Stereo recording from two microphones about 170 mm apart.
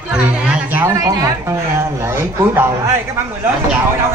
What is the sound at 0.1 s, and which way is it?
Speech, 5° right (ahead or behind).